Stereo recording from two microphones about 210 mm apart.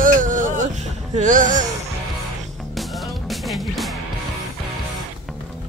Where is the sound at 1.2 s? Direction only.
40° right (ahead or behind).